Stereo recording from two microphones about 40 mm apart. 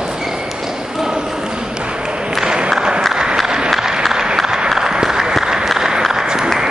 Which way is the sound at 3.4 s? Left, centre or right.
Centre.